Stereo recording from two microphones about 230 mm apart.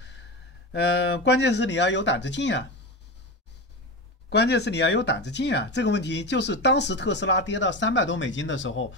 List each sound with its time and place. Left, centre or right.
0.7 s speech: left
4.3 s speech: left